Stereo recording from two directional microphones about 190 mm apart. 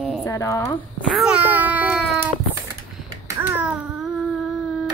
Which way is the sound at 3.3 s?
10° right (ahead or behind).